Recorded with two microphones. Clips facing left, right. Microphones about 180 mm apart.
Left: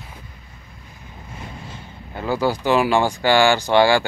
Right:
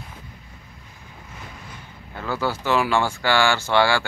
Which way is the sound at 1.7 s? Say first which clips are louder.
Left 4 dB; 20° left (ahead or behind).